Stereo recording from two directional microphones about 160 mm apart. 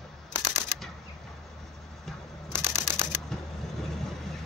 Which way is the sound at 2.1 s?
Centre (ahead or behind).